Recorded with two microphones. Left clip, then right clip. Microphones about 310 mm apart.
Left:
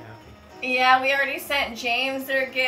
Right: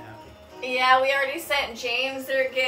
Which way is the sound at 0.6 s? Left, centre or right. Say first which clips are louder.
Left 1 dB; centre.